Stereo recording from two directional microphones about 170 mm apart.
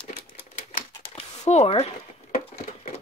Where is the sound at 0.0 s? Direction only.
40° left (ahead or behind).